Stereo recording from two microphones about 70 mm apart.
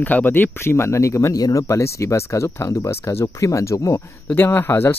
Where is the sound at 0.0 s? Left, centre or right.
Left.